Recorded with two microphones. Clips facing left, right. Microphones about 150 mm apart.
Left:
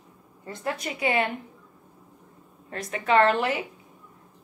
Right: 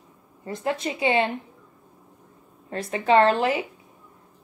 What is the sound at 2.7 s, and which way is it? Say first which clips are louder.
Speech: right 3 dB; 30° right (ahead or behind).